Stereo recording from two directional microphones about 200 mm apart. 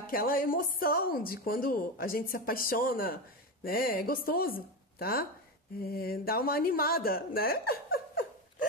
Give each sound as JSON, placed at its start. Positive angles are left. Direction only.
{"t": 0.0, "sound": "a woman's voice", "side_deg": 45}